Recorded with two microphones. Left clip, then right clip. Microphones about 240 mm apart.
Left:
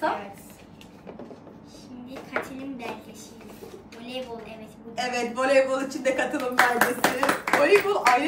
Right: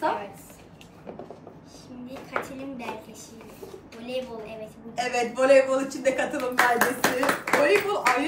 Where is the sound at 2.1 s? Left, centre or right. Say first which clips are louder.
Even; centre.